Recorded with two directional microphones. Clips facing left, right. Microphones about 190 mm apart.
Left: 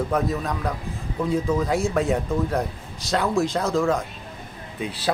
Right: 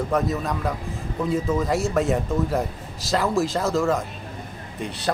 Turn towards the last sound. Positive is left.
turn(degrees=0)  # may be behind; listen again after turning